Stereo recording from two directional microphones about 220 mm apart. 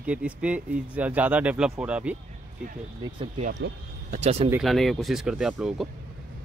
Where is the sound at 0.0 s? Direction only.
5° right (ahead or behind).